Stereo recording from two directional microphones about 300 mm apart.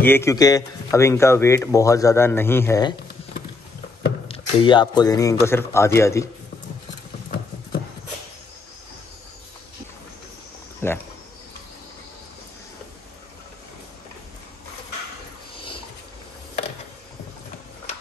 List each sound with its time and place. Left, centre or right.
0.0 s a man's voice: centre
4.3 s a man's voice: centre
10.8 s a man's voice: centre
15.5 s a sound: centre